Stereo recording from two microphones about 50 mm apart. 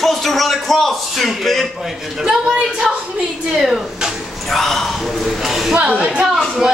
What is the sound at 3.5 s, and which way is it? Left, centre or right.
Speech, centre.